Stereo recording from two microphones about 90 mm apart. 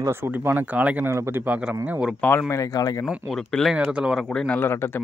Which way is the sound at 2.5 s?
40° left (ahead or behind).